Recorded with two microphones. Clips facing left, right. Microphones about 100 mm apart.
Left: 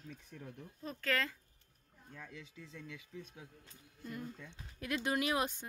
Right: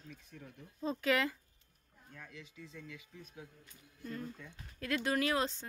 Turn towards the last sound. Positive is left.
turn(degrees=15)  # may be behind; listen again after turning